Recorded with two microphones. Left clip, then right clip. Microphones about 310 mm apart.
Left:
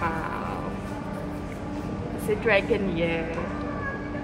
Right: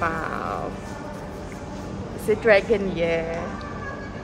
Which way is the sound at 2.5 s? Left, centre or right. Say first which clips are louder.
Right 5 dB; right.